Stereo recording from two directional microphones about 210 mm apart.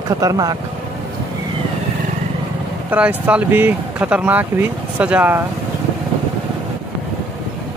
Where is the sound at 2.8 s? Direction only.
5° right (ahead or behind).